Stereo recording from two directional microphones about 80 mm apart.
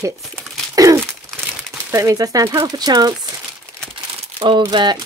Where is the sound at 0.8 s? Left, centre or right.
Right.